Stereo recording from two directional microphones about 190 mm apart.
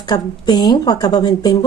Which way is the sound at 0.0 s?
20° left (ahead or behind).